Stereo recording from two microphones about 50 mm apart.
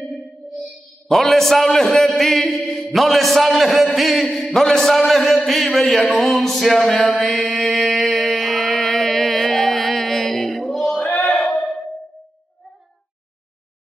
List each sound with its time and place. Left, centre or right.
0.1 s music: centre
0.6 s a man's voice: centre
7.8 s a sound: centre
8.7 s music: centre